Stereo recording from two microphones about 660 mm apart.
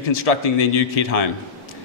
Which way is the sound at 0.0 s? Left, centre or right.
Left.